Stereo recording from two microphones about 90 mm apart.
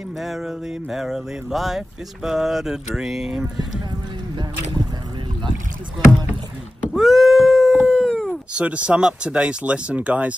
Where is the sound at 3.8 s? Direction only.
60° right (ahead or behind).